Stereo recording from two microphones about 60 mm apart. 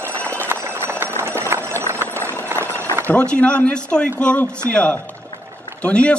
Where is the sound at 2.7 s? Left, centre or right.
Right.